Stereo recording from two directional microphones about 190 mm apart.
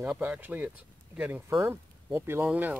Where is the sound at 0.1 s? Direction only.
5° right (ahead or behind).